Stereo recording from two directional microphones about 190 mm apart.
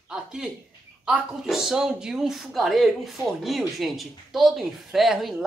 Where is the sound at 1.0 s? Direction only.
5° right (ahead or behind).